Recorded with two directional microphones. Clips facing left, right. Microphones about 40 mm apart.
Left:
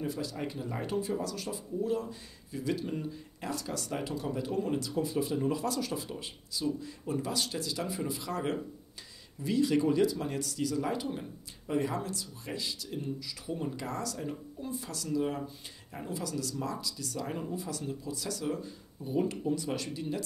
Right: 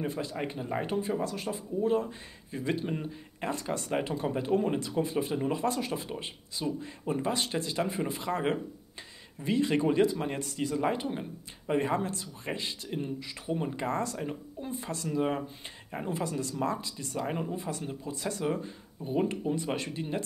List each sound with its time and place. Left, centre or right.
0.0 s speech: right